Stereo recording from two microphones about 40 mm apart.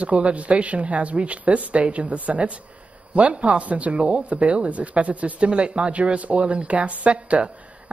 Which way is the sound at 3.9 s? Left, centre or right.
Right.